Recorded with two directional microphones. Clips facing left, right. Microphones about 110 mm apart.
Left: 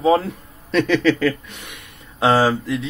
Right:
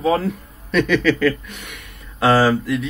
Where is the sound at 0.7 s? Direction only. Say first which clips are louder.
Even; 30° left (ahead or behind).